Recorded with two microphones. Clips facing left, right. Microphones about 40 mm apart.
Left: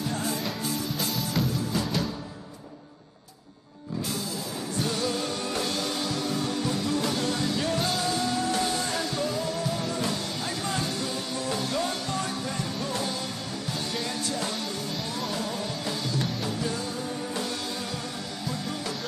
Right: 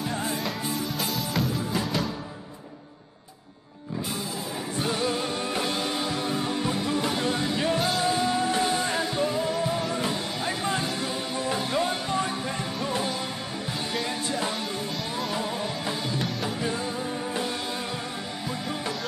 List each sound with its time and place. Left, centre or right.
0.1 s music: right
0.9 s music: centre
4.7 s music: right
15.3 s music: right